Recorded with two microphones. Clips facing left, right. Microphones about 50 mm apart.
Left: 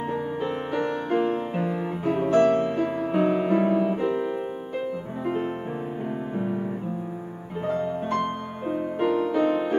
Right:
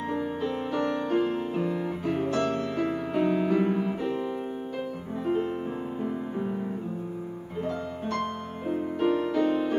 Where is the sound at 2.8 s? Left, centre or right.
Centre.